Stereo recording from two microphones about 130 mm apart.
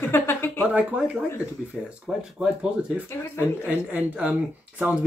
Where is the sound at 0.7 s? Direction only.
10° right (ahead or behind).